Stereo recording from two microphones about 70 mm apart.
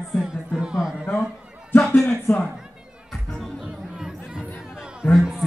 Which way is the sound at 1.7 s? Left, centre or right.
Left.